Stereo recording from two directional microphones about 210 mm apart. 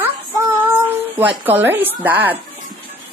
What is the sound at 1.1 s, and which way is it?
Speech, 10° right (ahead or behind).